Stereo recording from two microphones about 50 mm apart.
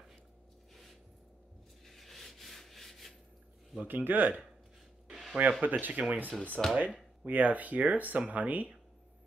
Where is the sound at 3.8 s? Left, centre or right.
Right.